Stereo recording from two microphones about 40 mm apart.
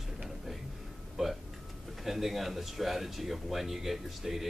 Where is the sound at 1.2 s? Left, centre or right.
Centre.